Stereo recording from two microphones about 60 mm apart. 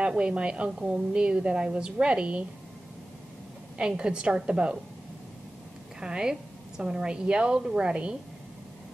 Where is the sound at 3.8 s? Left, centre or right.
Centre.